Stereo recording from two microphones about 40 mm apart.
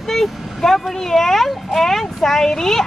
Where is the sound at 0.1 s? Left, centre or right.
Centre.